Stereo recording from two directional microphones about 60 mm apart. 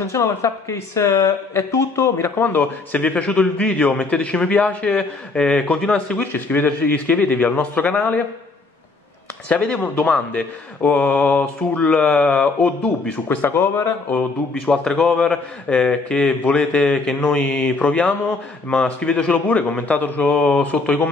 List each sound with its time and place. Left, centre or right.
0.0 s speech: left
2.1 s a man's voice: left; by 6.2 s centre
6.3 s a man's voice: left
9.5 s a man's voice: left
13.3 s speech: left
14.5 s a man's voice: centre